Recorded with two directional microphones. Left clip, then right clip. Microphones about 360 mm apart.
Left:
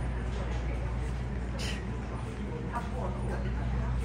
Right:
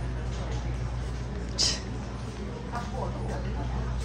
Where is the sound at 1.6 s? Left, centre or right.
Centre.